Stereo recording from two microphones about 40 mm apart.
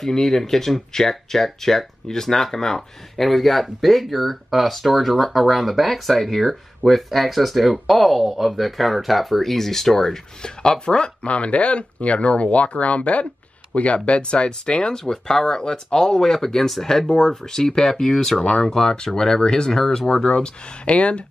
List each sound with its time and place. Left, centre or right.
0.0 s speech: centre
11.2 s speech: left